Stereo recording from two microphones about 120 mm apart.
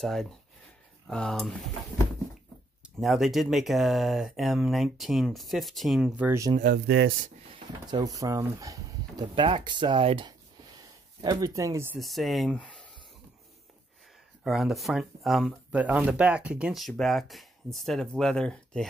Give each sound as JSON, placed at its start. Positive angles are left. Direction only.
{"t": 0.0, "sound": "speech", "side_deg": 0}
{"t": 3.0, "sound": "speech", "side_deg": 0}
{"t": 6.2, "sound": "speech", "side_deg": -25}
{"t": 8.0, "sound": "speech", "side_deg": -30}
{"t": 9.3, "sound": "speech", "side_deg": -40}
{"t": 11.5, "sound": "speech", "side_deg": -25}
{"t": 12.0, "sound": "speech", "side_deg": 0}
{"t": 14.4, "sound": "speech", "side_deg": 0}
{"t": 15.7, "sound": "speech", "side_deg": -10}